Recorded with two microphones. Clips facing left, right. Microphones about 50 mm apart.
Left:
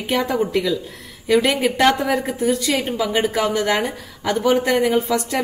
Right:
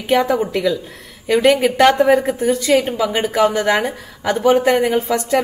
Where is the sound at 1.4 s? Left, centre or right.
Right.